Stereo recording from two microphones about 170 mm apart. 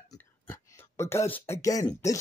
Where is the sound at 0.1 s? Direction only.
15° left (ahead or behind).